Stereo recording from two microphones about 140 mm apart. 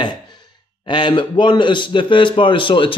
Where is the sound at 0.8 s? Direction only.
35° left (ahead or behind).